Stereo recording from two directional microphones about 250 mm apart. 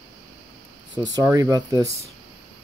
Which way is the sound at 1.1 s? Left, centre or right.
Centre.